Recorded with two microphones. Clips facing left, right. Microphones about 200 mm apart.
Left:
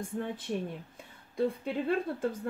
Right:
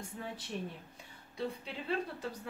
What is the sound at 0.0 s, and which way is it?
Speech, 50° left (ahead or behind).